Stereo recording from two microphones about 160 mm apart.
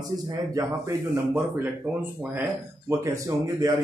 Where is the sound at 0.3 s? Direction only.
20° right (ahead or behind).